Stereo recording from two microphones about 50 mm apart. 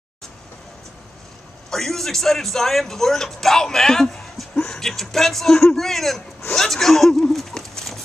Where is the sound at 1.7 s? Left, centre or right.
Centre.